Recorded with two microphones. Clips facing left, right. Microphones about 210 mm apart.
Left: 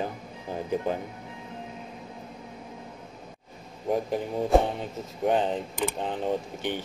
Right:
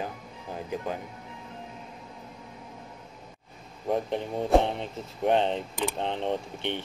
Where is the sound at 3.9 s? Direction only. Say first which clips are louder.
Left 1 dB; 5° left (ahead or behind).